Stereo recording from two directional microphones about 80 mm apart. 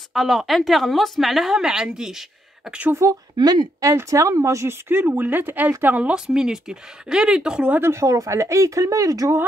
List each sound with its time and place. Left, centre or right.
0.1 s a woman's voice: centre
2.9 s speech: right
3.3 s speech: right
3.8 s speech: right; by 7.8 s centre
7.8 s speech: right